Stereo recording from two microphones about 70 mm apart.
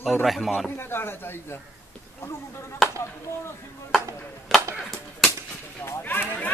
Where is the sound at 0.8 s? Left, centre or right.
Left.